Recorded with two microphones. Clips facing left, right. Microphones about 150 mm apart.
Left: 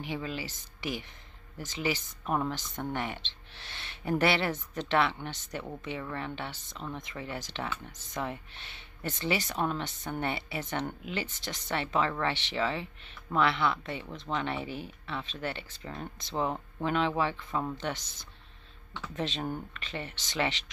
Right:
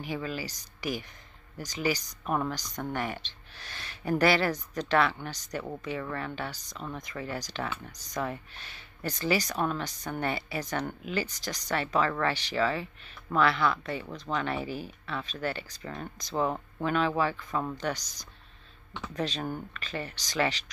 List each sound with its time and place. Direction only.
0.0 s speech: 25° left (ahead or behind)